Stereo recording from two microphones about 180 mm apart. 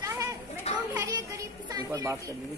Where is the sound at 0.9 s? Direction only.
20° right (ahead or behind).